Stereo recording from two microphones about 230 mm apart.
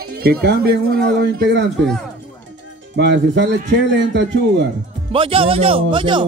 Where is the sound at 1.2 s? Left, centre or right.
Right.